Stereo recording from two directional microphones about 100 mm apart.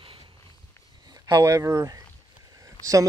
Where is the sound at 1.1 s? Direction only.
40° right (ahead or behind).